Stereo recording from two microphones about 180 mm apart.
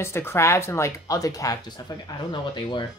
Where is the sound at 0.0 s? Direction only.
15° left (ahead or behind).